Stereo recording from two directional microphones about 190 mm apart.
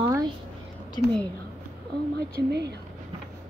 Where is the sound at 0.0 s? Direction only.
20° right (ahead or behind).